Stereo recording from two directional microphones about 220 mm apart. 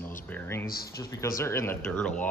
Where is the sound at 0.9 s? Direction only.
15° left (ahead or behind).